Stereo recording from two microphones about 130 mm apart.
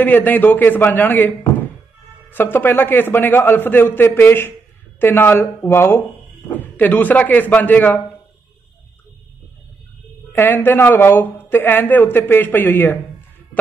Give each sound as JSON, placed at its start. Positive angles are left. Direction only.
{"t": 0.0, "sound": "a man's voice", "side_deg": 15}
{"t": 10.3, "sound": "a man's voice", "side_deg": 20}